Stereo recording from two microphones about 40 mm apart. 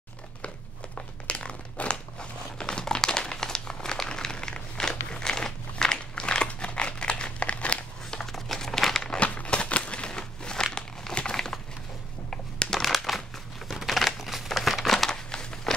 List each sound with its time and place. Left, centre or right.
0.9 s crumpling: left
8.3 s crumpling: centre
9.2 s crumpling: left; by 11.6 s centre
12.3 s a sound: centre
12.8 s crumpling: centre